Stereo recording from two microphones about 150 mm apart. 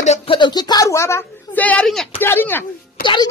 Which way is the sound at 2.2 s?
15° left (ahead or behind).